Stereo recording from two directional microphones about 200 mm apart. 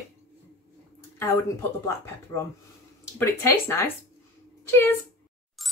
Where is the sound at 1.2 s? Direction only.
15° left (ahead or behind).